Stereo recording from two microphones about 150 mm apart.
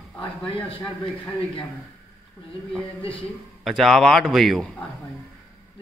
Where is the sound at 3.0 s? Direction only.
35° left (ahead or behind).